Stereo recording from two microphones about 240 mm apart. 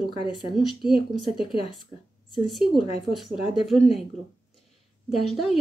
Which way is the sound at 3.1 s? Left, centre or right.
Centre.